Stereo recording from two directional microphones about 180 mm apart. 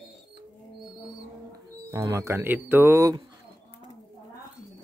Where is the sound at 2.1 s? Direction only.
15° right (ahead or behind).